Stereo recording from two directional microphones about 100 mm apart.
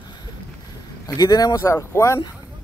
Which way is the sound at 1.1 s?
40° left (ahead or behind).